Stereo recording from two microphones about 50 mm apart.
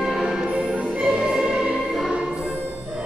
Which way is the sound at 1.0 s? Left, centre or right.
Centre.